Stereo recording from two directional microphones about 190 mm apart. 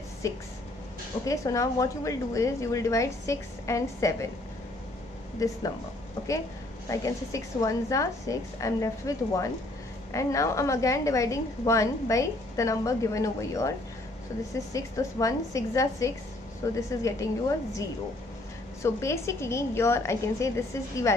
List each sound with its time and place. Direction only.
0.2 s a woman's voice: 15° left (ahead or behind)
5.4 s a woman's voice: 15° left (ahead or behind)
6.9 s a woman's voice: 15° left (ahead or behind)